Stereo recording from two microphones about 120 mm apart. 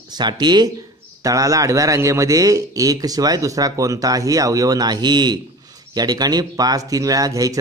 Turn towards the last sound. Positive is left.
turn(degrees=-30)  # may be behind; listen again after turning